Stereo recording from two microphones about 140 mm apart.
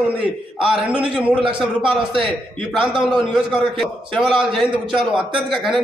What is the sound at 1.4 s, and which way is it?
Speech, 40° right (ahead or behind).